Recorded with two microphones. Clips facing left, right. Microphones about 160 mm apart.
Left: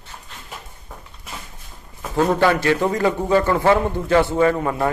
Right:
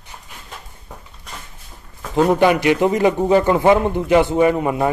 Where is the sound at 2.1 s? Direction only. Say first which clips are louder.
Right 3 dB; 15° right (ahead or behind).